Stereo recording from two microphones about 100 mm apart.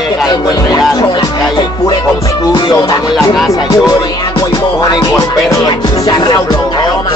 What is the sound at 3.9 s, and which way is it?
Music, 45° left (ahead or behind).